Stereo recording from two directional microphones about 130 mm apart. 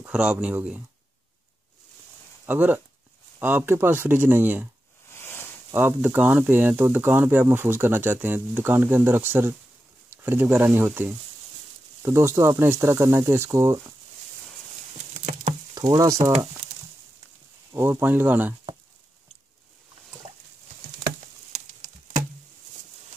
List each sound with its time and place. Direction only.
0.1 s speech: 10° right (ahead or behind)
2.4 s speech: 15° right (ahead or behind)
5.1 s a sound: 20° left (ahead or behind)
5.7 s speech: 15° right (ahead or behind)
15.7 s speech: 25° right (ahead or behind)
17.7 s speech: 15° right (ahead or behind)